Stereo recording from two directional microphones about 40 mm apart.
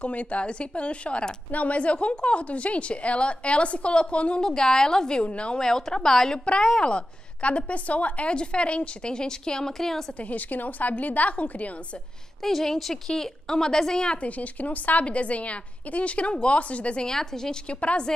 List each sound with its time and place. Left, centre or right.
0.0 s a woman's voice: left
4.4 s a woman's voice: centre
5.2 s a woman's voice: left
5.6 s a woman's voice: centre
9.7 s a woman's voice: centre
10.2 s a woman's voice: left
12.4 s a woman's voice: centre
14.0 s a woman's voice: left
17.1 s a woman's voice: centre
17.6 s a woman's voice: left